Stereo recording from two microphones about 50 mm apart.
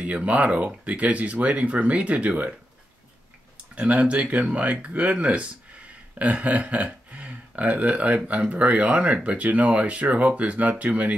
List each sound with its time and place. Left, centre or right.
0.0 s speech: right
3.5 s speech: right